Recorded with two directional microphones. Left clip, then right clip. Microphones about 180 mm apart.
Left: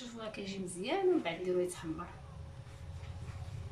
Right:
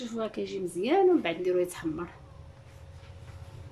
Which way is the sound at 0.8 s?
55° right (ahead or behind).